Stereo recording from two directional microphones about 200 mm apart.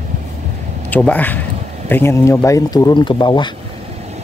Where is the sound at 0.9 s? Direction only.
10° left (ahead or behind).